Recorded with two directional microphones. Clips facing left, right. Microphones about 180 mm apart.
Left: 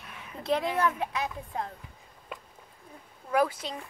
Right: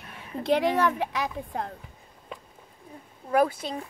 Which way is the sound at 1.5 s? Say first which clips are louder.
Right 2 dB; 60° right (ahead or behind).